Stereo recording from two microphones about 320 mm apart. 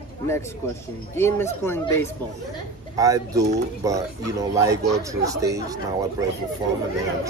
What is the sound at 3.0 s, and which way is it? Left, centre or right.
Speech, centre.